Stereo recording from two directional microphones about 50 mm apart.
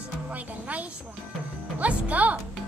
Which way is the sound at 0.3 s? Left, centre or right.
Right.